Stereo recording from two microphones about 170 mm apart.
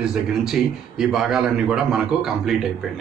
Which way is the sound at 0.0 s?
5° right (ahead or behind).